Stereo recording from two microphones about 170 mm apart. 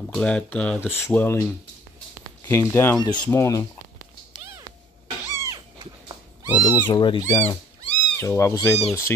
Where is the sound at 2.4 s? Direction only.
15° left (ahead or behind).